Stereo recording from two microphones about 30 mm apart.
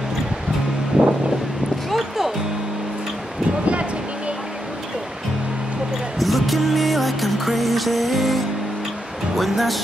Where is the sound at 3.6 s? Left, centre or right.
Right.